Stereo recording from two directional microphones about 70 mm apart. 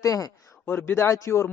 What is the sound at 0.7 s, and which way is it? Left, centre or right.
Speech, left.